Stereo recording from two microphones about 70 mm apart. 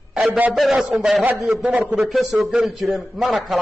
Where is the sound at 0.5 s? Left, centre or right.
Centre.